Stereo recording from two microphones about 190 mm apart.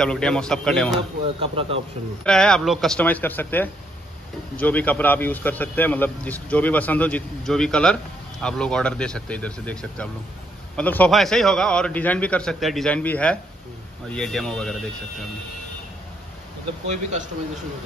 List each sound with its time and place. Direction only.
0.0 s a man's voice: 5° left (ahead or behind)
1.5 s speech: 30° right (ahead or behind)
2.2 s a man's voice: 5° left (ahead or behind)
16.8 s a man's voice: 40° right (ahead or behind)